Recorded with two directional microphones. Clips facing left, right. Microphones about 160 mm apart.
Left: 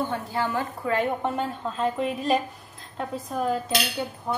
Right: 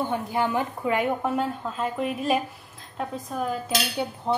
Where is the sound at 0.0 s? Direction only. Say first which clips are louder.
Right 2 dB; 15° right (ahead or behind).